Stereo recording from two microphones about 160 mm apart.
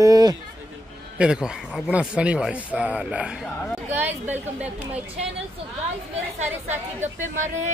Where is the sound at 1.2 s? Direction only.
5° right (ahead or behind).